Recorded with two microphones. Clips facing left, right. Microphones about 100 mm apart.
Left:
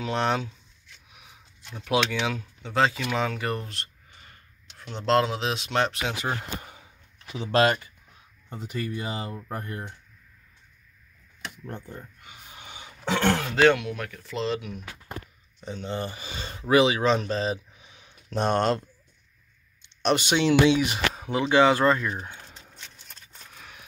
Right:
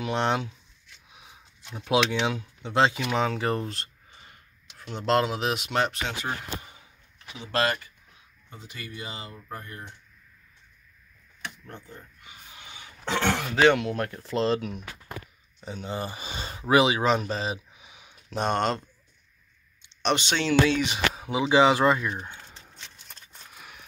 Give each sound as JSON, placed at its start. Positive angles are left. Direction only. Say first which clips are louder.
{"t": 0.0, "sound": "speech", "louder": "even", "side_deg": -20}
{"t": 1.6, "sound": "speech", "louder": "right 1 dB", "side_deg": -15}
{"t": 4.6, "sound": "speech", "louder": "left 1 dB", "side_deg": -5}
{"t": 8.5, "sound": "speech", "louder": "left 9 dB", "side_deg": 45}
{"t": 11.6, "sound": "speech", "louder": "left 5 dB", "side_deg": 35}
{"t": 13.0, "sound": "a man's voice", "louder": "left 2 dB", "side_deg": 0}
{"t": 13.9, "sound": "speech", "louder": "right 5 dB", "side_deg": -35}
{"t": 15.6, "sound": "speech", "louder": "left 1 dB", "side_deg": -10}
{"t": 18.3, "sound": "a man's voice", "louder": "left 2 dB", "side_deg": 0}
{"t": 20.0, "sound": "speech", "louder": "left 3 dB", "side_deg": 5}
{"t": 21.1, "sound": "speech", "louder": "right 1 dB", "side_deg": -5}
{"t": 22.1, "sound": "typing", "louder": "left 1 dB", "side_deg": 5}
{"t": 23.4, "sound": "a sound", "louder": "left 1 dB", "side_deg": -5}